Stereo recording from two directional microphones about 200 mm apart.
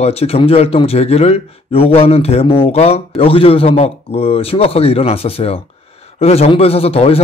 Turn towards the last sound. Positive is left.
turn(degrees=30)  # may be behind; listen again after turning